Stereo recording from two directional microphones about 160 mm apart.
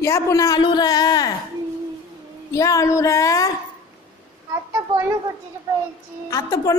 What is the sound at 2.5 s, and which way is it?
Speech, 20° left (ahead or behind).